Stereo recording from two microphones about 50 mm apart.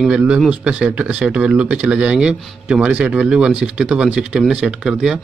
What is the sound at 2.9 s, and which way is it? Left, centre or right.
Speech, right.